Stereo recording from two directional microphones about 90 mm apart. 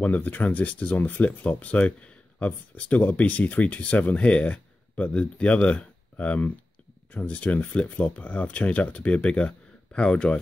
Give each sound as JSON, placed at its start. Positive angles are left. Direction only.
{"t": 0.0, "sound": "speech", "side_deg": 20}